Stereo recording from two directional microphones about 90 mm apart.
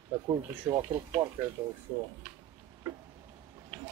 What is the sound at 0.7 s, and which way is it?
Speech, 30° right (ahead or behind).